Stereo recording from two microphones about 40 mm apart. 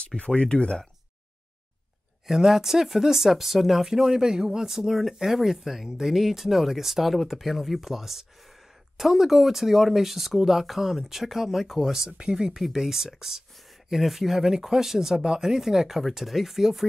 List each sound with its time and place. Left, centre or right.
0.0 s speech: left
2.2 s speech: centre
12.2 s speech: centre